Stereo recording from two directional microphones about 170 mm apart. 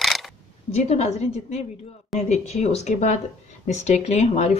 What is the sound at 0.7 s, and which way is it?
Speech, 40° left (ahead or behind).